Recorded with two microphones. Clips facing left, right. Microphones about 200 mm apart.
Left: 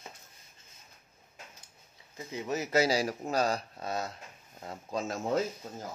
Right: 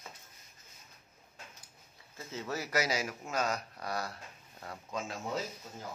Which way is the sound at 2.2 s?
15° left (ahead or behind).